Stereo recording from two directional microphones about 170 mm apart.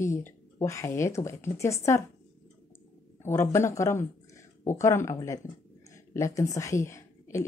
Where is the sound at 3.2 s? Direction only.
15° left (ahead or behind).